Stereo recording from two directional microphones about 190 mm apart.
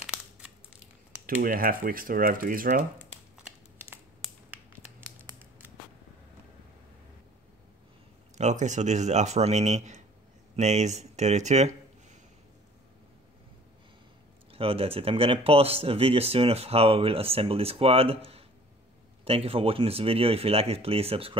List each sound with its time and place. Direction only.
1.2 s speech: 45° right (ahead or behind)
4.5 s finger snapping: 10° right (ahead or behind)
8.4 s speech: 40° right (ahead or behind)
14.5 s speech: 30° right (ahead or behind)